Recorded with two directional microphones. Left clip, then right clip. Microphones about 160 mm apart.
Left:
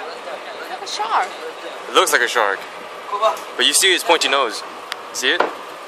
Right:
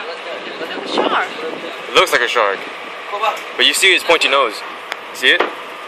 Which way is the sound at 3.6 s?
10° left (ahead or behind).